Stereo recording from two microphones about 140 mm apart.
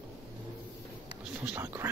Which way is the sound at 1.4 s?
10° right (ahead or behind).